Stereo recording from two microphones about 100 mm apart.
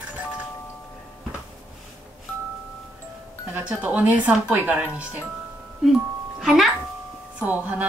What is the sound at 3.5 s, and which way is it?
Speech, 15° right (ahead or behind).